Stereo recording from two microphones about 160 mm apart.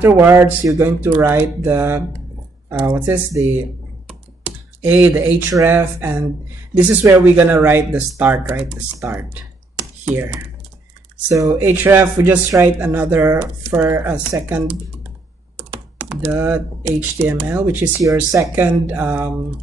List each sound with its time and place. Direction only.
0.0 s speech: 15° right (ahead or behind)
4.8 s speech: 10° right (ahead or behind)
16.1 s speech: 10° right (ahead or behind)